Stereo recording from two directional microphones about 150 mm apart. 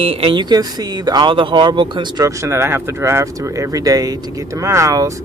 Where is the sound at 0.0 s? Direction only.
35° right (ahead or behind).